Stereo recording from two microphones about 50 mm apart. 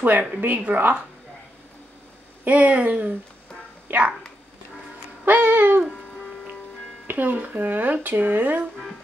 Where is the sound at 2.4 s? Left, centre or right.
Right.